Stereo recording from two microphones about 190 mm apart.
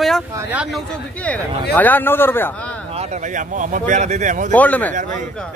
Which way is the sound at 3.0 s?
40° right (ahead or behind).